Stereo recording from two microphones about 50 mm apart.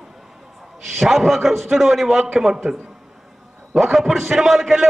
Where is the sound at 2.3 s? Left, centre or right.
Centre.